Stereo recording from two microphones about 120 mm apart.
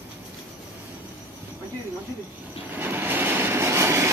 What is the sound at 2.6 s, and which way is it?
Train, 15° right (ahead or behind).